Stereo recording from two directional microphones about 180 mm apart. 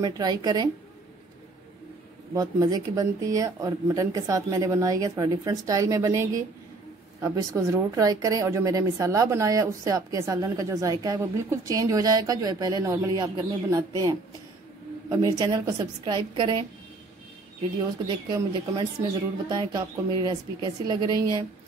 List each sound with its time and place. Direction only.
0.0 s speech: 20° right (ahead or behind)
2.3 s speech: 20° right (ahead or behind)
18.0 s speech: 20° right (ahead or behind)